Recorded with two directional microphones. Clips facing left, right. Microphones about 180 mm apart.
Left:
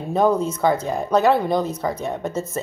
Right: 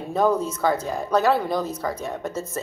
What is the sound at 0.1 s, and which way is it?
Speech, 20° left (ahead or behind).